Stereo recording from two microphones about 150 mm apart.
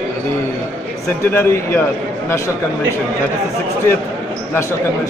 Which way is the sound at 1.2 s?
15° left (ahead or behind).